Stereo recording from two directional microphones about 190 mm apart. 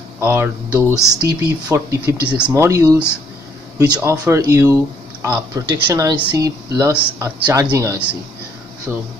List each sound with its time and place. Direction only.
0.2 s speech: 10° right (ahead or behind)